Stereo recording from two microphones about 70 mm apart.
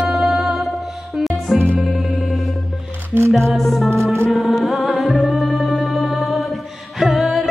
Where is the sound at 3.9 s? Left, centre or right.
Right.